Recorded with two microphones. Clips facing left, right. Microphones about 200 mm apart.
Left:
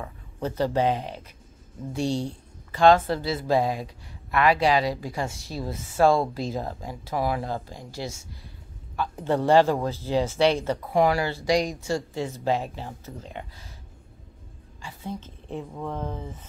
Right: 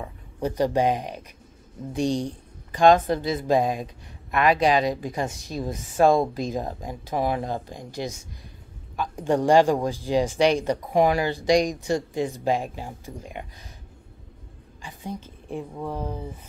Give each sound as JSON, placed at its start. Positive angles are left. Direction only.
{"t": 0.0, "sound": "speech", "side_deg": -15}
{"t": 14.8, "sound": "a woman's voice", "side_deg": -15}